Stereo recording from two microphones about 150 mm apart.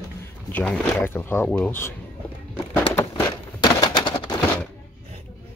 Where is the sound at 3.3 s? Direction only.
25° left (ahead or behind).